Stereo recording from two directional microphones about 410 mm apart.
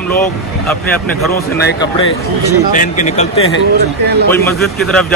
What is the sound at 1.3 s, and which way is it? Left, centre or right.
A man's voice, left.